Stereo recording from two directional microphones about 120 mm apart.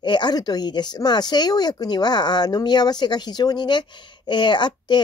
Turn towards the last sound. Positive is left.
turn(degrees=40)  # may be behind; listen again after turning